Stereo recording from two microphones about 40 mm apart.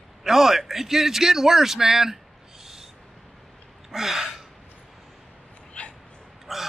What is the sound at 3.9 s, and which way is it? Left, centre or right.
Speech, centre.